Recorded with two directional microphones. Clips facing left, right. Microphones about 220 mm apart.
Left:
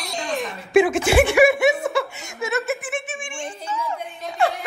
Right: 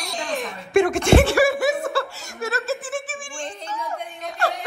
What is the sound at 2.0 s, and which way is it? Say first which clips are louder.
Laughter: left 1 dB; 20° left (ahead or behind).